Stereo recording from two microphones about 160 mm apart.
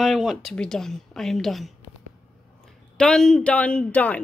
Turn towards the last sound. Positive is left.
turn(degrees=10)  # may be behind; listen again after turning